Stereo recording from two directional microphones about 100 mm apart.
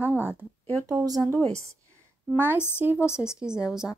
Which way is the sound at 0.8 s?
40° right (ahead or behind).